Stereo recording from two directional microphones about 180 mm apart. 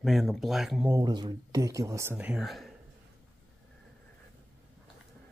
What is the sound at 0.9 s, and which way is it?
Speech, 20° right (ahead or behind).